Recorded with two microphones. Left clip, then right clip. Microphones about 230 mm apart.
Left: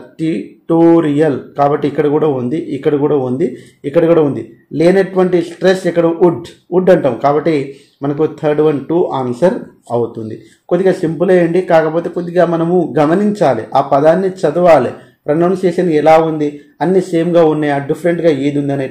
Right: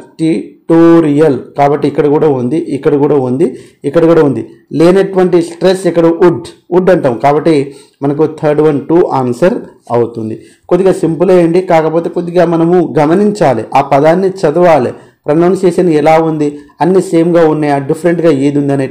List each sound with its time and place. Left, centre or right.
0.2 s speech: centre
10.7 s speech: right